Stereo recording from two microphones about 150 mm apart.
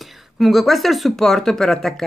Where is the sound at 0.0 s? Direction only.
Centre (ahead or behind).